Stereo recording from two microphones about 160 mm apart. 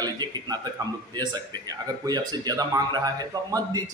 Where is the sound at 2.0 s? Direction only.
25° right (ahead or behind).